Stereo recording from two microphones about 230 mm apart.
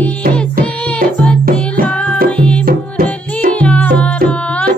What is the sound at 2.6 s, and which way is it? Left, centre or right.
Music, right.